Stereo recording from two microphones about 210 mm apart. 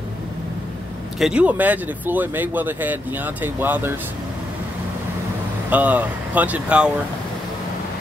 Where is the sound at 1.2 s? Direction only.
5° right (ahead or behind).